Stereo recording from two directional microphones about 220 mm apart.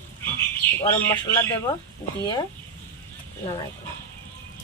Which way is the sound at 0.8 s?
15° left (ahead or behind).